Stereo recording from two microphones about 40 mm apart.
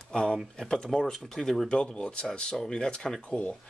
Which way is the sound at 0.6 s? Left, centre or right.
Centre.